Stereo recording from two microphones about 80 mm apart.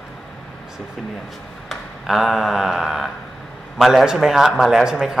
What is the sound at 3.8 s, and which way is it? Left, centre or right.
A man's voice, centre.